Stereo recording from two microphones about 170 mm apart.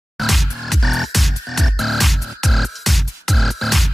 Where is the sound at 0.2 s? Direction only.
Centre (ahead or behind).